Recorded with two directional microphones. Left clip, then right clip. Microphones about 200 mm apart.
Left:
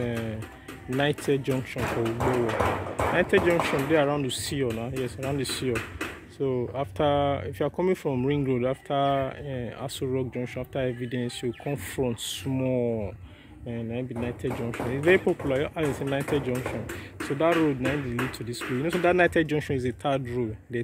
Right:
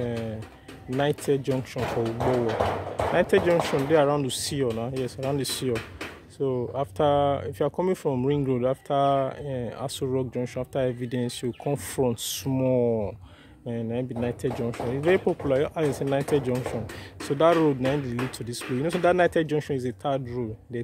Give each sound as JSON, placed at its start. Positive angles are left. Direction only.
{"t": 0.9, "sound": "speech", "side_deg": -10}
{"t": 1.8, "sound": "speech", "side_deg": 55}
{"t": 3.2, "sound": "speech", "side_deg": -20}
{"t": 15.0, "sound": "speech", "side_deg": -15}